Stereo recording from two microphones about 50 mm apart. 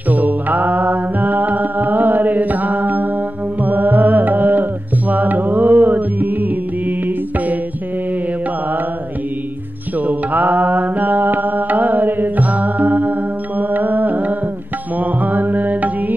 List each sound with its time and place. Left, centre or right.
0.1 s mantra: right
3.6 s music: right
9.9 s mantra: right
15.0 s music: right